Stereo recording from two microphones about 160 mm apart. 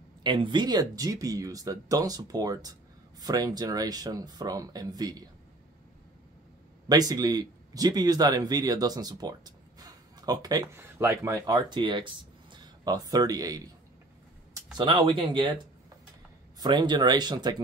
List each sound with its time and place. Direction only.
0.2 s speech: 30° right (ahead or behind)
6.9 s speech: 25° right (ahead or behind)
14.8 s speech: 30° right (ahead or behind)